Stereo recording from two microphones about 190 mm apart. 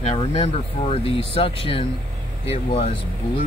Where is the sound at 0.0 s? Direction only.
30° left (ahead or behind).